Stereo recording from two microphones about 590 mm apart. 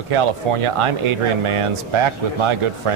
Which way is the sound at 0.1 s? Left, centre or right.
Right.